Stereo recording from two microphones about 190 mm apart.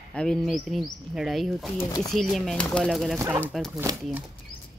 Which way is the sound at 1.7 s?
20° left (ahead or behind).